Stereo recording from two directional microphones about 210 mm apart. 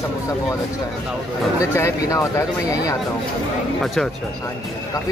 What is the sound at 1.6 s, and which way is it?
Speech, 15° left (ahead or behind).